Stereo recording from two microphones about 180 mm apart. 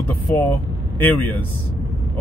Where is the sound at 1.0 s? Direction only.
10° left (ahead or behind).